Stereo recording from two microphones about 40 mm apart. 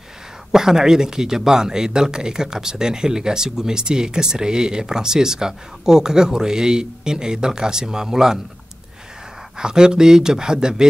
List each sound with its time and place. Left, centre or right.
0.5 s speech: centre
9.6 s speech: centre